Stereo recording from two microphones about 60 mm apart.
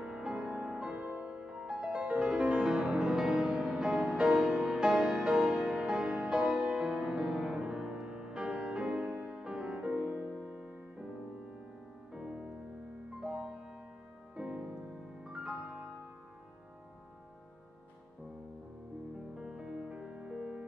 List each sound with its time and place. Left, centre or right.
0.0 s music: centre
12.1 s music: centre
19.3 s music: centre